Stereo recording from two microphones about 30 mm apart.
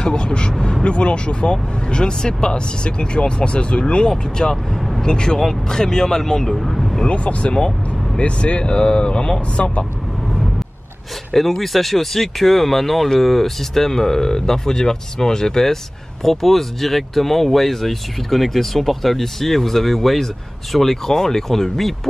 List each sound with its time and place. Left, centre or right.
0.0 s speech: left
0.5 s speech: left
0.8 s speech: left
4.4 s speech: left
4.7 s vehicle: centre
5.0 s speech: left; by 6.9 s centre
7.1 s speech: left
11.3 s speech: centre